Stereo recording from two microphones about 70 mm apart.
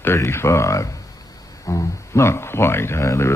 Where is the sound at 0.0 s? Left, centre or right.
Left.